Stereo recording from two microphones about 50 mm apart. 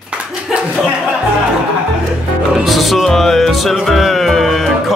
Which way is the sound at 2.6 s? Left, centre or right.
Centre.